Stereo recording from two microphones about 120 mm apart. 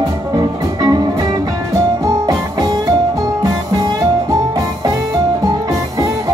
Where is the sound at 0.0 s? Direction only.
30° right (ahead or behind).